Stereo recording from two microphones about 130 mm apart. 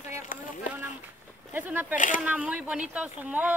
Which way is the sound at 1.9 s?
90° left.